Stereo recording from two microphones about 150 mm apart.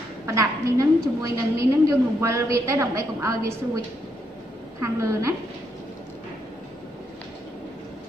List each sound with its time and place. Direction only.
0.3 s a woman's voice: 20° right (ahead or behind)